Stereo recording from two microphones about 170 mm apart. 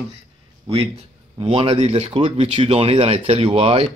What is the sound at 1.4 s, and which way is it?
Speech, 35° right (ahead or behind).